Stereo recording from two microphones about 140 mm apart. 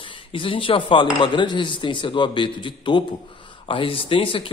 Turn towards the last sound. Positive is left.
turn(degrees=40)  # may be behind; listen again after turning